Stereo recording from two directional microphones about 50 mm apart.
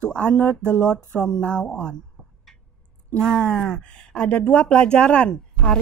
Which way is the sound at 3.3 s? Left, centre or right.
Centre.